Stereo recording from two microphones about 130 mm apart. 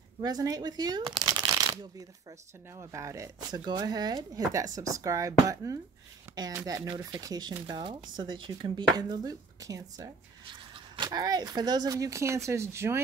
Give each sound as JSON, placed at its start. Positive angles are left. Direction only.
{"t": 0.2, "sound": "speech", "side_deg": -30}
{"t": 10.4, "sound": "speech", "side_deg": -40}